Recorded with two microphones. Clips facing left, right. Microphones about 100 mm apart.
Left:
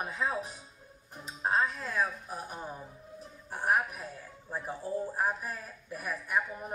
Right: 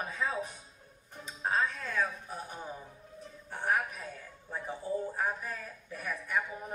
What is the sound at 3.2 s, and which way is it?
Music, 15° left (ahead or behind).